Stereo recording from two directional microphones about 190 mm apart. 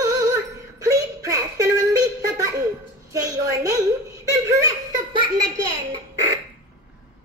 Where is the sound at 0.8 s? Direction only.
20° right (ahead or behind).